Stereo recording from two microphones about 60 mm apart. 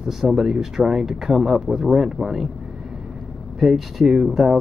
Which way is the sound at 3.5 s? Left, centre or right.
Centre.